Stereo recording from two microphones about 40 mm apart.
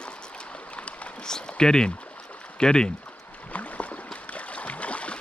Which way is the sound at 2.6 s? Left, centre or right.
Centre.